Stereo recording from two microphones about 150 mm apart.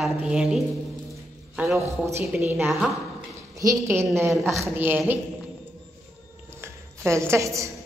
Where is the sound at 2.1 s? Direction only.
10° right (ahead or behind).